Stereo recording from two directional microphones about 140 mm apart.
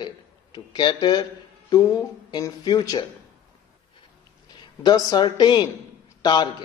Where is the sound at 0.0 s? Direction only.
30° left (ahead or behind).